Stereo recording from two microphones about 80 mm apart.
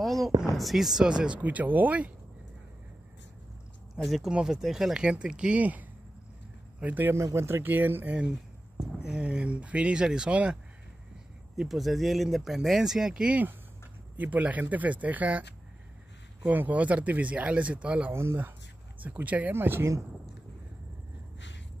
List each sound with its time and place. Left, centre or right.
0.0 s speech: centre
3.9 s speech: centre; by 7.2 s right
7.2 s speech: right; by 10.6 s centre
11.5 s speech: centre
16.4 s speech: centre
18.1 s speech: right
19.0 s speech: right